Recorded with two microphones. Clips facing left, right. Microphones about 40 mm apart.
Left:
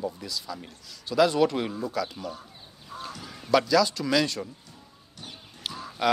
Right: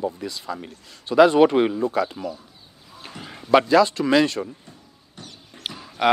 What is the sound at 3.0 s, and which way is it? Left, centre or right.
Honk, right.